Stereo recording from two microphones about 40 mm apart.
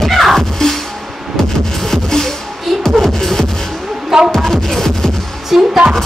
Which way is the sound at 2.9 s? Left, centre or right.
Centre.